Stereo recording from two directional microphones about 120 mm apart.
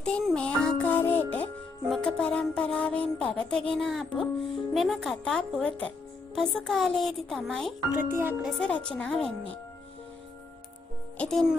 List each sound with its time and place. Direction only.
0.0 s music: 5° left (ahead or behind)
1.9 s speech: 5° left (ahead or behind)
7.9 s speech: 15° right (ahead or behind)
8.4 s speech: centre (ahead or behind)
11.1 s speech: 5° left (ahead or behind)